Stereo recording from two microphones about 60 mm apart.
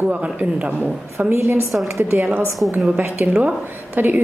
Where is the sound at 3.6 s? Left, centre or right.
Right.